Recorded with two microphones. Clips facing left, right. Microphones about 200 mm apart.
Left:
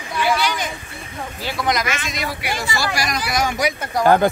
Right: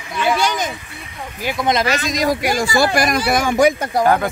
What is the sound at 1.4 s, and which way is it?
Speech, 25° right (ahead or behind).